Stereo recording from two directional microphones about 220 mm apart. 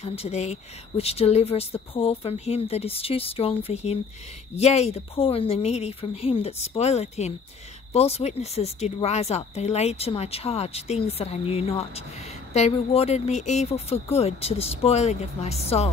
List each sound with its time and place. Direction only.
0.0 s speech: 30° left (ahead or behind)